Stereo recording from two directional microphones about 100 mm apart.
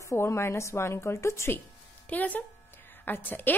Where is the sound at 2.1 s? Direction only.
15° left (ahead or behind).